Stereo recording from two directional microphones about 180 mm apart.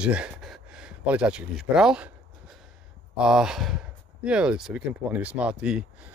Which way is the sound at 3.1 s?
5° right (ahead or behind).